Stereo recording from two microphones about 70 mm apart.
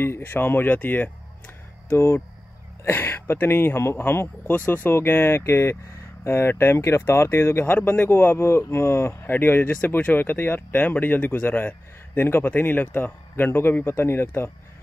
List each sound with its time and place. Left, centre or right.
0.0 s speech: left
1.9 s speech: left